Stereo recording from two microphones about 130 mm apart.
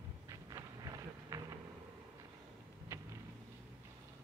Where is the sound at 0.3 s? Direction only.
25° right (ahead or behind).